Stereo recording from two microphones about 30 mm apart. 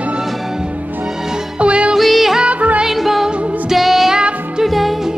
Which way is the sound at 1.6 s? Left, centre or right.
Right.